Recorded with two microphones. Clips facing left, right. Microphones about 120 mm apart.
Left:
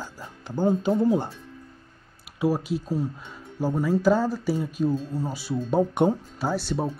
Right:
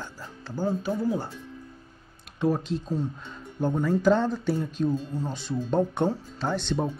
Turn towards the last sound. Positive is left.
turn(degrees=5)  # may be behind; listen again after turning